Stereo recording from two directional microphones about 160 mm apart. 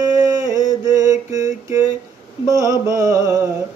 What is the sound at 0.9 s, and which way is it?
Mantra, 20° right (ahead or behind).